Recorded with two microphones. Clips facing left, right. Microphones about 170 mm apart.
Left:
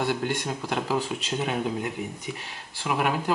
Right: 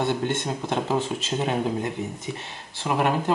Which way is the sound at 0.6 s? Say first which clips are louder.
Right 3 dB; 25° right (ahead or behind).